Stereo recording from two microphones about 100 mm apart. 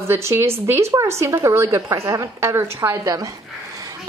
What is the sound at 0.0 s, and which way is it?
A woman's voice, 25° right (ahead or behind).